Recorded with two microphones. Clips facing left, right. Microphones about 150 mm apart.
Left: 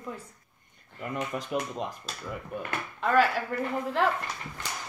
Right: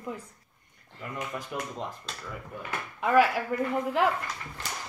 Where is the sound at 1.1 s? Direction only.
20° left (ahead or behind).